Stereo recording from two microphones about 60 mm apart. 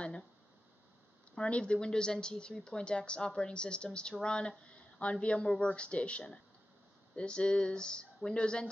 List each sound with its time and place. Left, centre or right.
1.3 s speech: centre